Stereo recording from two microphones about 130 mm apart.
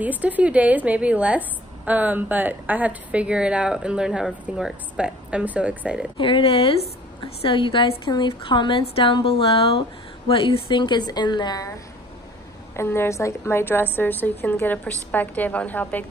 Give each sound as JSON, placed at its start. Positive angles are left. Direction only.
{"t": 0.0, "sound": "a woman's voice", "side_deg": -10}
{"t": 6.1, "sound": "a woman's voice", "side_deg": 40}
{"t": 12.7, "sound": "a woman's voice", "side_deg": 20}